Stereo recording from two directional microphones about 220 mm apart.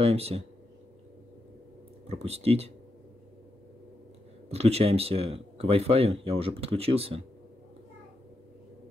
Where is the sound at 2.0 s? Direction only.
30° right (ahead or behind).